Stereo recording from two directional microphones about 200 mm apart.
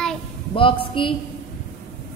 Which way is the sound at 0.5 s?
25° left (ahead or behind).